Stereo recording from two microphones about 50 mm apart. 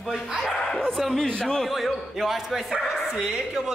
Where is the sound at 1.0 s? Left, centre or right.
Centre.